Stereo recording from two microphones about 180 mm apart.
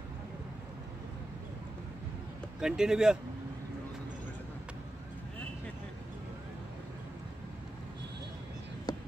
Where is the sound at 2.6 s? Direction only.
5° right (ahead or behind).